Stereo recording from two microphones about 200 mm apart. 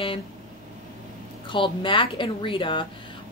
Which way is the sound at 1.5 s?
25° left (ahead or behind).